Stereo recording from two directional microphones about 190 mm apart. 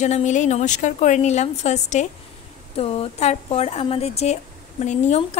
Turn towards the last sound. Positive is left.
turn(degrees=35)  # may be behind; listen again after turning